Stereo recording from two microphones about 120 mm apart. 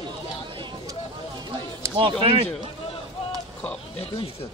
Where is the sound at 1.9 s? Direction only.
50° right (ahead or behind).